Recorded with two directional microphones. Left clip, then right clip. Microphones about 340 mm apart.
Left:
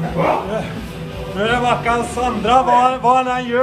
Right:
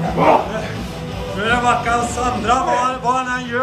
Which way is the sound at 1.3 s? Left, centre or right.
Centre.